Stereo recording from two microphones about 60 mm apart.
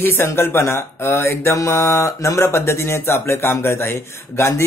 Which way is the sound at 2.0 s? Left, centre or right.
Left.